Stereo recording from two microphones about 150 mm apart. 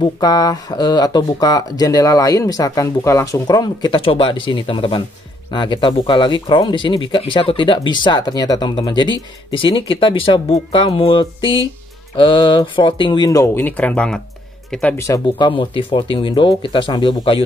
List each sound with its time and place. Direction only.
0.0 s speech: 25° left (ahead or behind); by 15.0 s 5° left (ahead or behind)
15.0 s speech: 20° left (ahead or behind)